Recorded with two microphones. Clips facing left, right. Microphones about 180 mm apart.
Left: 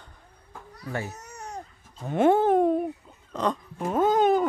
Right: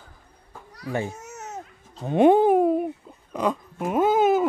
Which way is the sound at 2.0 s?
15° right (ahead or behind).